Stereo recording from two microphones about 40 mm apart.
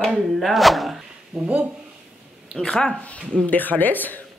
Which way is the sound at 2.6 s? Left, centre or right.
Centre.